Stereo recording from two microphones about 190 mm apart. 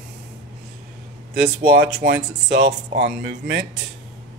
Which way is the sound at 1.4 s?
50° right (ahead or behind).